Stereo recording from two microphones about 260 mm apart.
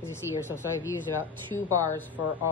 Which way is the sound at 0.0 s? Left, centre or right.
Centre.